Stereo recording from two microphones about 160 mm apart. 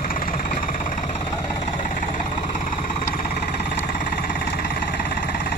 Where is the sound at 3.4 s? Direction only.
80° left.